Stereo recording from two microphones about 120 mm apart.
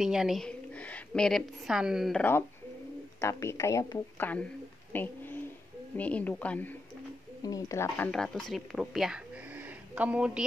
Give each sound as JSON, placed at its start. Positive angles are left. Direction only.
{"t": 0.0, "sound": "a woman's voice", "side_deg": -5}
{"t": 3.2, "sound": "a woman's voice", "side_deg": 20}
{"t": 4.2, "sound": "speech", "side_deg": 15}
{"t": 4.9, "sound": "a sound", "side_deg": 15}
{"t": 5.9, "sound": "speech", "side_deg": 10}
{"t": 7.4, "sound": "a woman's voice", "side_deg": 30}
{"t": 8.1, "sound": "speech", "side_deg": 5}
{"t": 9.5, "sound": "a sound", "side_deg": -15}